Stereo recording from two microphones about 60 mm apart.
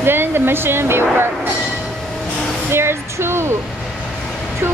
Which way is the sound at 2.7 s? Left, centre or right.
Right.